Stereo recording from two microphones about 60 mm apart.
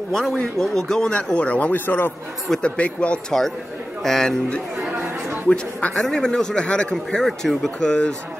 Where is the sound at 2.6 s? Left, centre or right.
Centre.